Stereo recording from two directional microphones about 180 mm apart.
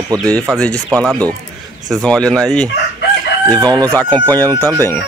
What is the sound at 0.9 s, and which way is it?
Speech, 5° left (ahead or behind).